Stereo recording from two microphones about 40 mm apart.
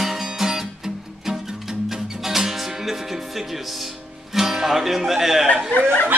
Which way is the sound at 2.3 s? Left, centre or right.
Centre.